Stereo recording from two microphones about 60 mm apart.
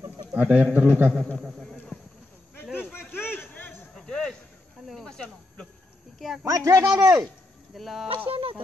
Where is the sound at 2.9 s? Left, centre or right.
Left.